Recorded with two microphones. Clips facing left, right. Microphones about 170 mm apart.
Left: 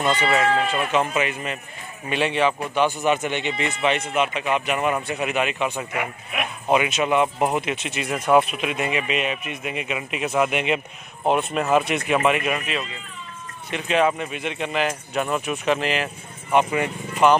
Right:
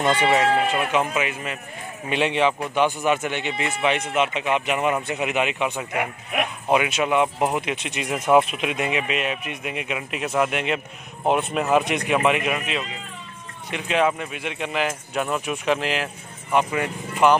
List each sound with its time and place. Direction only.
0.2 s speech: 15° right (ahead or behind)
2.0 s speech: 15° right (ahead or behind)
3.1 s speech: 5° right (ahead or behind)
6.7 s speech: 5° right (ahead or behind)
8.0 s speech: centre (ahead or behind)
8.5 s speech: 15° right (ahead or behind)
9.1 s speech: centre (ahead or behind)
11.2 s speech: 5° right (ahead or behind)
11.8 s speech: 15° right (ahead or behind); by 16.9 s 5° left (ahead or behind)